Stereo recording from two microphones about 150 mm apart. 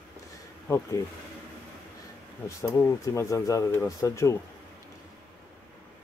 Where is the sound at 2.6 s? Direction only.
20° left (ahead or behind).